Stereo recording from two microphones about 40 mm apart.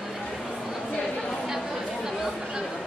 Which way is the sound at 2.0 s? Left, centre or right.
Centre.